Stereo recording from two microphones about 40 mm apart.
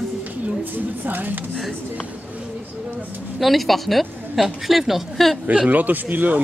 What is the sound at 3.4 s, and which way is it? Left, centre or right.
Speech, centre.